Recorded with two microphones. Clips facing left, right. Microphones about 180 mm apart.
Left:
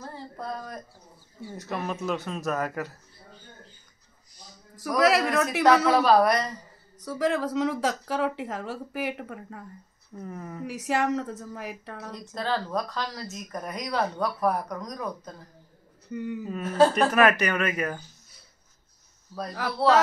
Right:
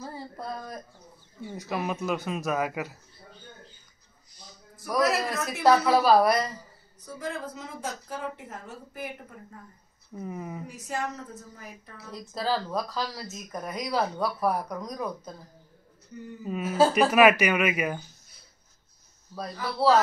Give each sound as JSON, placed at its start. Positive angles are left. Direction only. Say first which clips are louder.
{"t": 0.0, "sound": "a sound", "louder": "even", "side_deg": -5}
{"t": 1.7, "sound": "speech", "louder": "even", "side_deg": -5}
{"t": 4.9, "sound": "speech", "louder": "left 4 dB", "side_deg": 90}
{"t": 6.0, "sound": "speech", "louder": "right 1 dB", "side_deg": -5}
{"t": 7.1, "sound": "speech", "louder": "left 9 dB", "side_deg": 90}
{"t": 10.1, "sound": "speech", "louder": "right 2 dB", "side_deg": -10}
{"t": 10.7, "sound": "a woman's voice", "louder": "left 10 dB", "side_deg": 85}
{"t": 12.4, "sound": "speech", "louder": "even", "side_deg": -5}
{"t": 16.1, "sound": "a woman's voice", "louder": "left 9 dB", "side_deg": 80}
{"t": 16.4, "sound": "speech", "louder": "left 1 dB", "side_deg": -5}